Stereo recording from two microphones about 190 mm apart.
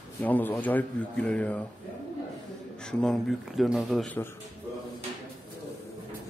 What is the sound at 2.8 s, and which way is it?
Speech, 5° left (ahead or behind).